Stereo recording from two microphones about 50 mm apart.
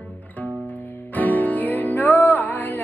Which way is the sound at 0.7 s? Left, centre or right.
Left.